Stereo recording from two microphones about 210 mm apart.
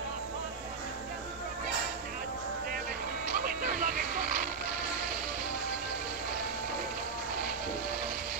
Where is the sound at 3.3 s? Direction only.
40° right (ahead or behind).